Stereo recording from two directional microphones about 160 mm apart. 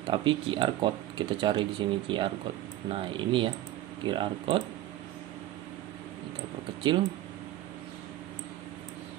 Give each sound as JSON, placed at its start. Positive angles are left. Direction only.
{"t": 0.0, "sound": "speech", "side_deg": -30}